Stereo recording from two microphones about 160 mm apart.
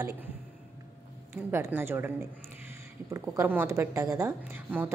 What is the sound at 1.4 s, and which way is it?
A woman's voice, 15° right (ahead or behind).